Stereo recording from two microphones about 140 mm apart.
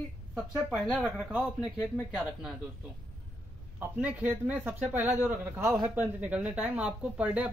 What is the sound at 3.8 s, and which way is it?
Speech, 10° right (ahead or behind).